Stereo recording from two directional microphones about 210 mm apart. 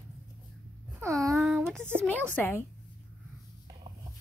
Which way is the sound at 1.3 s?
Centre (ahead or behind).